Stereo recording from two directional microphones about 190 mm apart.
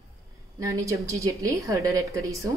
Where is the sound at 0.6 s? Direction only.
15° right (ahead or behind).